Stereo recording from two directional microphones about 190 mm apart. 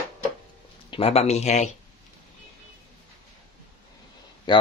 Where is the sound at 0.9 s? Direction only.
30° left (ahead or behind).